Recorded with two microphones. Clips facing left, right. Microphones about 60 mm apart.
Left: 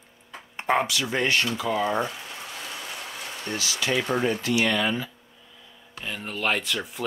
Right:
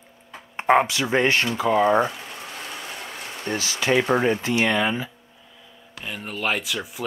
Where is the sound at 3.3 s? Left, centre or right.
Right.